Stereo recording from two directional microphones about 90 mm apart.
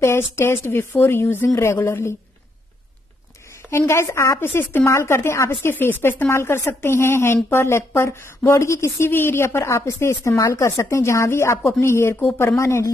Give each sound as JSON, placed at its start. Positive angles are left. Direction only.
{"t": 0.0, "sound": "a woman's voice", "side_deg": 30}
{"t": 3.7, "sound": "a woman's voice", "side_deg": 30}